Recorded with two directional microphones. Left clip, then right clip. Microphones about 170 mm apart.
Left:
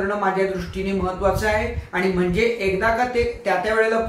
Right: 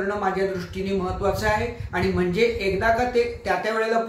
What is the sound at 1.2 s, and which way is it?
Speech, 25° right (ahead or behind).